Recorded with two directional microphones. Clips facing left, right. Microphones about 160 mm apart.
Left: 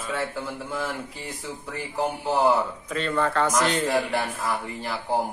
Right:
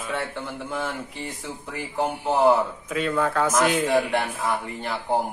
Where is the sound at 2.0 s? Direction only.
5° right (ahead or behind).